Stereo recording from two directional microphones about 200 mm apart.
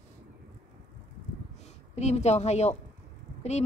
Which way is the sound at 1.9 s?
35° left (ahead or behind).